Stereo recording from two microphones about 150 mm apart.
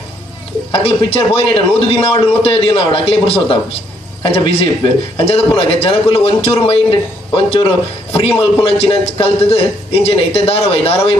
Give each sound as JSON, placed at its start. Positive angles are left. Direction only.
{"t": 0.7, "sound": "a man's voice", "side_deg": 40}